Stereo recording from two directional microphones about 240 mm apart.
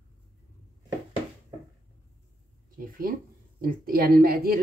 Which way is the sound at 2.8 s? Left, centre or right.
Right.